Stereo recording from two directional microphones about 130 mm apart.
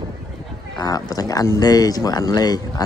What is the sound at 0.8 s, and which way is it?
Speech, 30° left (ahead or behind).